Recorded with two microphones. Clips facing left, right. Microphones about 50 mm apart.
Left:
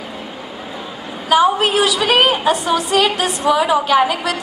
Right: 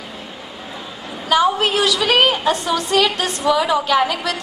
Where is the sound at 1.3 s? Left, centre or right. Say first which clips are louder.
Left 3 dB; centre.